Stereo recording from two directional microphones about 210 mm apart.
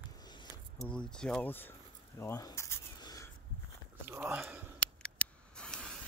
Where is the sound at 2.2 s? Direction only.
15° left (ahead or behind).